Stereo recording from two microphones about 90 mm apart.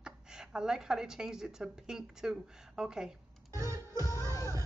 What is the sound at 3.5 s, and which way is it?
Music, 35° right (ahead or behind).